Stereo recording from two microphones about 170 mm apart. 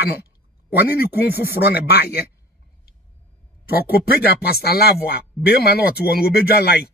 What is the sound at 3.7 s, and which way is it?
Speech, 65° left (ahead or behind).